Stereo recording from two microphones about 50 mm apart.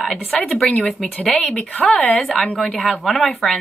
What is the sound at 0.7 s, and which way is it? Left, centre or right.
A woman's voice, centre.